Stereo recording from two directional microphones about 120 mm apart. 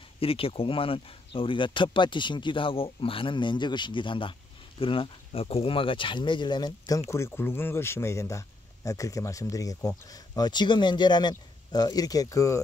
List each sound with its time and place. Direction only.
0.2 s speech: 50° left (ahead or behind)
7.1 s speech: 20° left (ahead or behind)